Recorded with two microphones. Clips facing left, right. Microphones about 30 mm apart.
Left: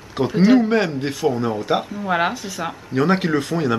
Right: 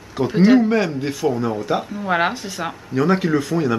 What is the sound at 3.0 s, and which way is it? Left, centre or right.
Speech, centre.